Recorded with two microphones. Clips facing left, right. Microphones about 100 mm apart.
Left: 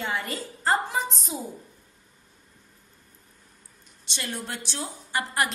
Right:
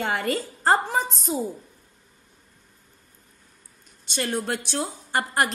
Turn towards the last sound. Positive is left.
turn(degrees=-45)  # may be behind; listen again after turning